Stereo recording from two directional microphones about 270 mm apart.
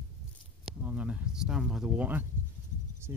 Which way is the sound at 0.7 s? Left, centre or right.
Centre.